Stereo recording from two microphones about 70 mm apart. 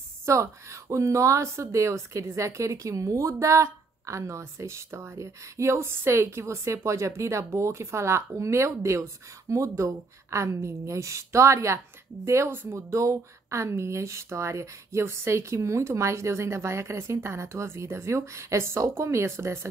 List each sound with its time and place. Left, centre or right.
0.2 s speech: right
12.9 s speech: right